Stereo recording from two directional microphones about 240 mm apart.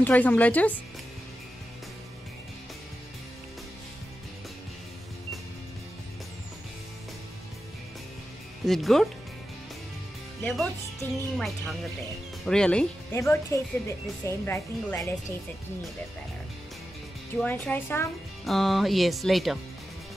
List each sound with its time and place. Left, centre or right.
0.0 s speech: centre
8.6 s speech: centre
10.4 s speech: centre
17.4 s speech: centre